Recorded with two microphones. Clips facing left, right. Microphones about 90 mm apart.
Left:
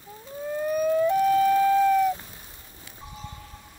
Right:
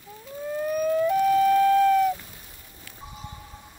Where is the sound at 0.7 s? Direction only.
5° left (ahead or behind).